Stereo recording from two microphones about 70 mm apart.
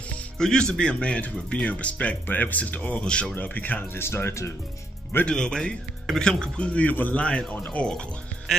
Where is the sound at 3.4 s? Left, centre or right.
Left.